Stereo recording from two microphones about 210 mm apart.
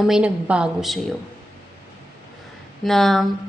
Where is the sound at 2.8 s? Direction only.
Centre (ahead or behind).